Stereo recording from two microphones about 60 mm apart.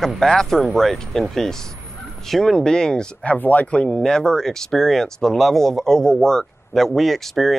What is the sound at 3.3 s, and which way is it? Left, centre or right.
Speech, left.